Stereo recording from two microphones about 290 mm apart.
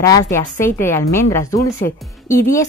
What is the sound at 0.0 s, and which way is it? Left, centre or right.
A woman's voice, centre.